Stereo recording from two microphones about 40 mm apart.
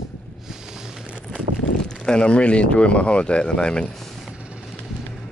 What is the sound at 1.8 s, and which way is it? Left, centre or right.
Speech, centre.